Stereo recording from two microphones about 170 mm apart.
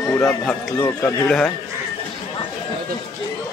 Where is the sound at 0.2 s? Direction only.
5° left (ahead or behind).